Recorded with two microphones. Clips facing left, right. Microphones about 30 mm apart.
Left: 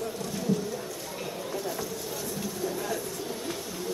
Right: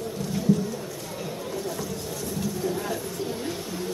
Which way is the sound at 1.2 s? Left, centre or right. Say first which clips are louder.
Right 2 dB; centre.